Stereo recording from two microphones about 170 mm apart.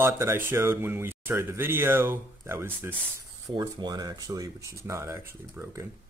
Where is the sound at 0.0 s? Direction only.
15° right (ahead or behind).